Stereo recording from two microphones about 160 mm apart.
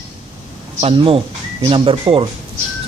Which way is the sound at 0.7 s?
35° right (ahead or behind).